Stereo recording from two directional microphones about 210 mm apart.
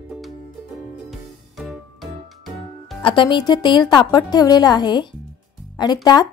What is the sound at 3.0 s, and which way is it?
A woman's voice, 20° left (ahead or behind).